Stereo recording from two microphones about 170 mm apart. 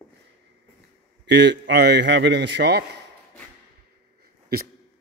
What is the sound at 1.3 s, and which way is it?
A man's voice, 90° right.